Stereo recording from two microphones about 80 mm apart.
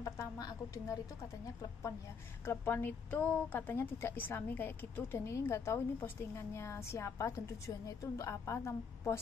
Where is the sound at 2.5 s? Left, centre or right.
Left.